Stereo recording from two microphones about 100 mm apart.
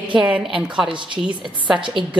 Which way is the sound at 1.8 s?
55° right (ahead or behind).